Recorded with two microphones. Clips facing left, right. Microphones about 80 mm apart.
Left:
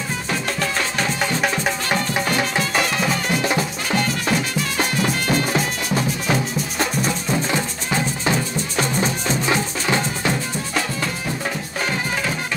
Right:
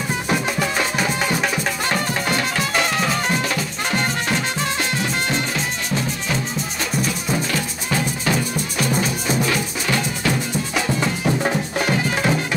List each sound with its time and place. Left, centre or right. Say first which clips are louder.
0.3 s music: right 2 dB; centre
1.4 s music: even; centre
2.3 s music: even; centre
7.5 s music: left 1 dB; left
9.5 s music: left 2 dB; left
11.0 s music: right 5 dB; right